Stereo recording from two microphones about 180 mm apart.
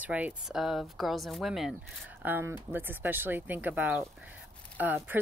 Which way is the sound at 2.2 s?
10° right (ahead or behind).